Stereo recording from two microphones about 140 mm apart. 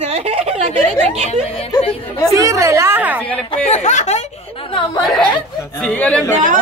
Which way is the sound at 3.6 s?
50° left (ahead or behind).